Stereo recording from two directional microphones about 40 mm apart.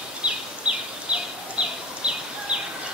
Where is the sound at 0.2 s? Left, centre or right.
Right.